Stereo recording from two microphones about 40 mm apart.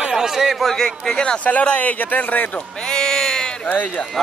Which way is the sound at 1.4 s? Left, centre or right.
Left.